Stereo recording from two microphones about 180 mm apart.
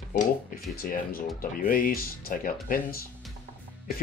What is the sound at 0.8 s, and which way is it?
Speech, 55° left (ahead or behind).